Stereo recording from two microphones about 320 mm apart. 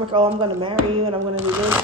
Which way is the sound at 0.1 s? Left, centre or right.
Centre.